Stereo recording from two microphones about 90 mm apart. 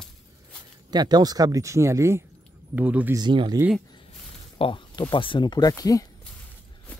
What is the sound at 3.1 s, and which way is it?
Speech, 60° right (ahead or behind).